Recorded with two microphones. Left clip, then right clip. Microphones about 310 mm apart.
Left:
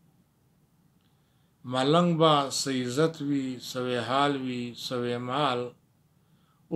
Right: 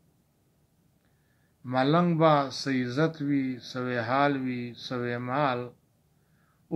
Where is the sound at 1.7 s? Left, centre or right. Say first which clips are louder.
Left 1 dB; centre.